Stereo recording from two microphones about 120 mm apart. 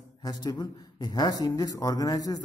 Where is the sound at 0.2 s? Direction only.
30° left (ahead or behind).